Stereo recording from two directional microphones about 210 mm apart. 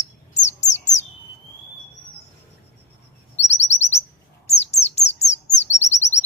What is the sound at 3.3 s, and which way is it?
Chirp, 30° left (ahead or behind).